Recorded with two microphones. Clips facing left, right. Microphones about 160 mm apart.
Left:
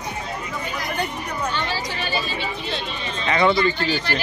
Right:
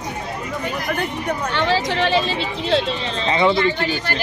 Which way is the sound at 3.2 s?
25° right (ahead or behind).